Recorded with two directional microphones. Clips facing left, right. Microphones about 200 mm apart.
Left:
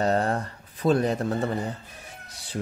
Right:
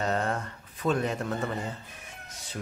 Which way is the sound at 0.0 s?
35° left (ahead or behind).